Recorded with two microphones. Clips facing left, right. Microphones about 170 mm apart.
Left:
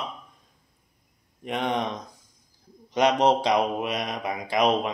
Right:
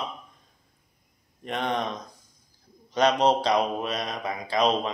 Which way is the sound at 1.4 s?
15° left (ahead or behind).